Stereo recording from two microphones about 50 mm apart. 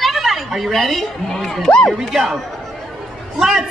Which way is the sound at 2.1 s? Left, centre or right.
Centre.